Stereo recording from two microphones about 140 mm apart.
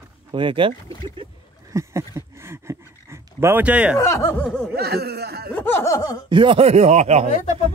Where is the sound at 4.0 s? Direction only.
20° left (ahead or behind).